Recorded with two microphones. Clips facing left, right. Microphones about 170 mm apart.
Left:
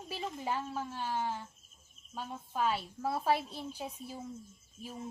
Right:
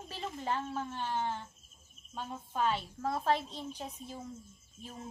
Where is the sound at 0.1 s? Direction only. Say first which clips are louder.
Even; 10° left (ahead or behind).